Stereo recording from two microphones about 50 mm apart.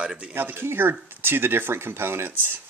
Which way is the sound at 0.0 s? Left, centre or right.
Right.